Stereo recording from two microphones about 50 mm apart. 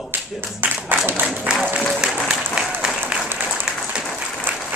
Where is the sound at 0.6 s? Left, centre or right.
Right.